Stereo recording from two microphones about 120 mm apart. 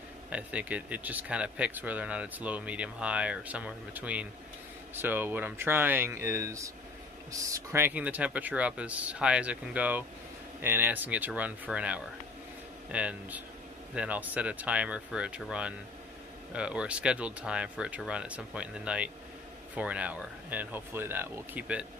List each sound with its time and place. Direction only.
0.3 s speech: 10° right (ahead or behind)